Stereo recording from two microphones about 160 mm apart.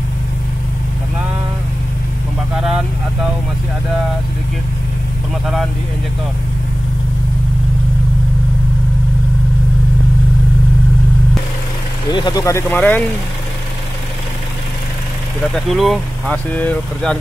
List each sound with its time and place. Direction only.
2.5 s vehicle: centre (ahead or behind)
12.1 s speech: 30° left (ahead or behind); by 13.0 s 10° left (ahead or behind)
15.7 s speech: centre (ahead or behind)